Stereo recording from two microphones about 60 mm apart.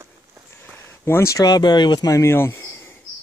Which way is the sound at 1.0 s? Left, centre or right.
Left.